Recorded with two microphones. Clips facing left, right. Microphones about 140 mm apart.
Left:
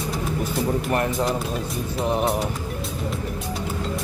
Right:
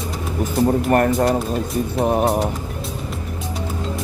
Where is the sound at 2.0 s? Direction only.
50° right (ahead or behind).